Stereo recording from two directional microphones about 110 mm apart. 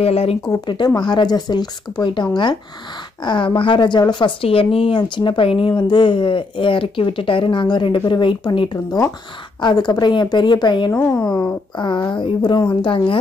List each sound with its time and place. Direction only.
0.0 s speech: 65° left (ahead or behind)
0.5 s speech: 40° left (ahead or behind)
10.9 s speech: 25° left (ahead or behind)
11.3 s speech: 45° left (ahead or behind)